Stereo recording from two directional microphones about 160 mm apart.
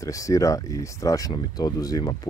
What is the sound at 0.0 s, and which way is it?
Speech, 20° left (ahead or behind).